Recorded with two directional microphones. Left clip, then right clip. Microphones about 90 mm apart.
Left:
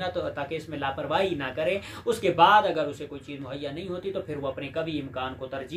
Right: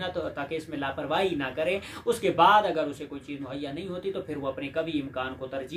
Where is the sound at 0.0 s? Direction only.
20° left (ahead or behind).